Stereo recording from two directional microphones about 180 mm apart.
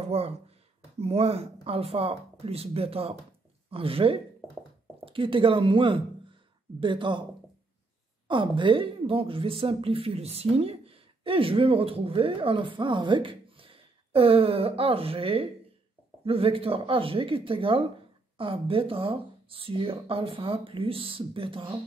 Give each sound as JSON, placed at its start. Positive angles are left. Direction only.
{"t": 0.1, "sound": "speech", "side_deg": -35}
{"t": 8.3, "sound": "speech", "side_deg": -25}